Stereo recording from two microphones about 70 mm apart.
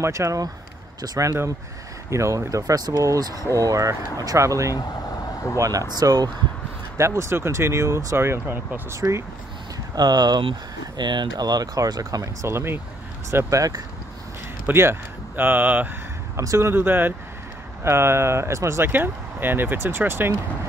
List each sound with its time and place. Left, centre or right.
0.0 s speech: right
2.0 s speech: right
7.0 s speech: right
9.9 s speech: right
11.0 s speech: right
14.7 s speech: right
16.3 s speech: right
18.9 s speech: right